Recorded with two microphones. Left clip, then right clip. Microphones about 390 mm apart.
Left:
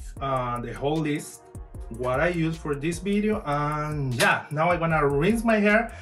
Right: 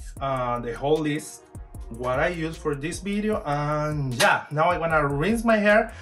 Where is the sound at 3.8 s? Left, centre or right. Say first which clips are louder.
Right 3 dB; centre.